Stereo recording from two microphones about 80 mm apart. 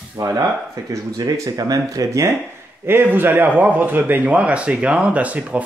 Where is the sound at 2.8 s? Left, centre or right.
Right.